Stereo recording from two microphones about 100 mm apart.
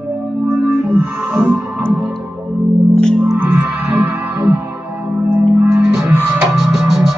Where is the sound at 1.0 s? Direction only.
20° right (ahead or behind).